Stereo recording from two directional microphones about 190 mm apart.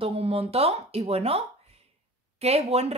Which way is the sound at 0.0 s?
30° right (ahead or behind).